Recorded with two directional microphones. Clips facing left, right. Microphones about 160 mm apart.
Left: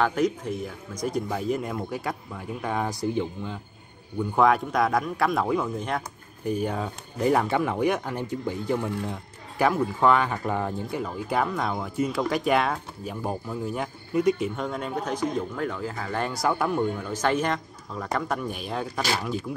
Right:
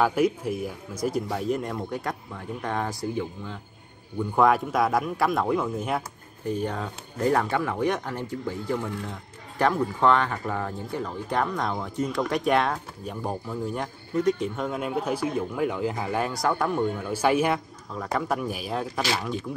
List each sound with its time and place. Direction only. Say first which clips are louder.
0.0 s speech: right 1 dB; 5° right (ahead or behind)
3.0 s speech: left 3 dB; 20° left (ahead or behind)
4.2 s speech: even; centre (ahead or behind)
6.4 s speech: left 1 dB; 10° left (ahead or behind)
9.6 s speech: even; 5° left (ahead or behind)
14.6 s speech: right 2 dB; 5° right (ahead or behind)
16.2 s speech: left 1 dB; centre (ahead or behind)